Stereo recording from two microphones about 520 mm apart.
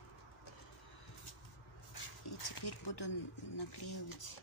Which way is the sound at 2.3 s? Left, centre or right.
Left.